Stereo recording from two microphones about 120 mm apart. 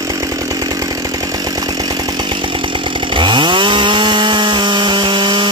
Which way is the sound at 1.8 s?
35° right (ahead or behind).